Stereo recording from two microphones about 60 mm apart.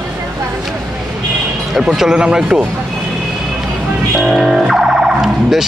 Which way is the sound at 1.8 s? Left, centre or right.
Centre.